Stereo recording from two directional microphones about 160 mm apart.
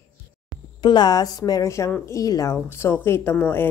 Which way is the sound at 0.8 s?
25° left (ahead or behind).